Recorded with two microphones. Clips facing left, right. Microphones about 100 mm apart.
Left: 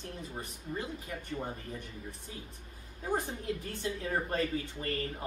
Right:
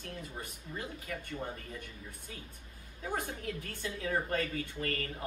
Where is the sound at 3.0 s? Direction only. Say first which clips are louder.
Left 3 dB; 20° left (ahead or behind).